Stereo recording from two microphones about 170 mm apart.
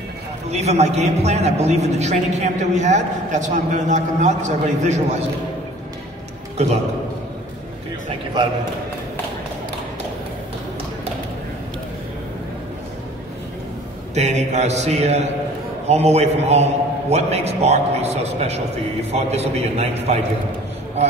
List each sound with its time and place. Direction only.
0.5 s a man's voice: 40° right (ahead or behind)
14.1 s a man's voice: 40° right (ahead or behind)